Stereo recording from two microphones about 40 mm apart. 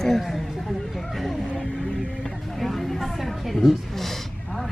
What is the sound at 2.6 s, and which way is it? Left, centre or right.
Vehicle, centre.